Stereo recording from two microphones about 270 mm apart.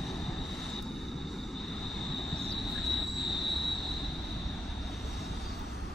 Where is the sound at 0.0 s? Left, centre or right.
Centre.